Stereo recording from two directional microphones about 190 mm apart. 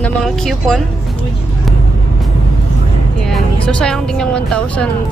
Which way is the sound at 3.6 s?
5° left (ahead or behind).